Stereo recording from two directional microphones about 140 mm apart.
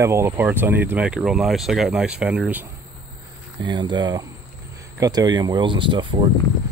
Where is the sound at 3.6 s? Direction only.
30° right (ahead or behind).